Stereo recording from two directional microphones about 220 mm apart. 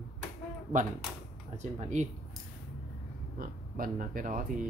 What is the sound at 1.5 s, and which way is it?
Speech, 30° right (ahead or behind).